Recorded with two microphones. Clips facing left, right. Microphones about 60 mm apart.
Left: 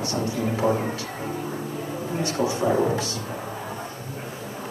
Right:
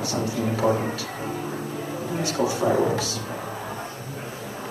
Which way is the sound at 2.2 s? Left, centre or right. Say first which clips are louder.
Even; left.